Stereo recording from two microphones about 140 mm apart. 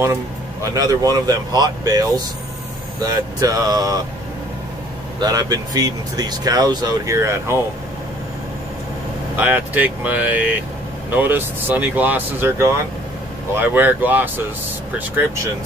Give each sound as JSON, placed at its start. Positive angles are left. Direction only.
{"t": 0.0, "sound": "speech", "side_deg": -20}
{"t": 5.2, "sound": "speech", "side_deg": -25}
{"t": 9.4, "sound": "speech", "side_deg": -10}